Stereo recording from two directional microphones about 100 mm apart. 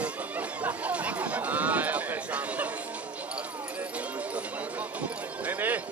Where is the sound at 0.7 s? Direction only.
15° right (ahead or behind).